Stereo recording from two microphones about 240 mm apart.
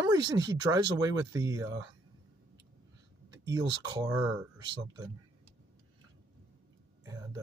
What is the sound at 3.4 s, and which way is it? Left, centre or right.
Speech, centre.